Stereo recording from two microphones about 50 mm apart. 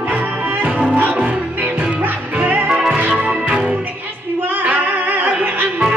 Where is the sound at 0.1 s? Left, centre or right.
Right.